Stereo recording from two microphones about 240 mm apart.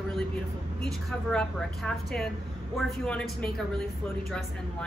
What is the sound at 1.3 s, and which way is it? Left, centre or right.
A woman's voice, centre.